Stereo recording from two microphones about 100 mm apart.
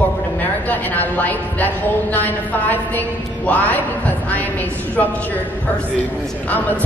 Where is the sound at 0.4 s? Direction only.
15° left (ahead or behind).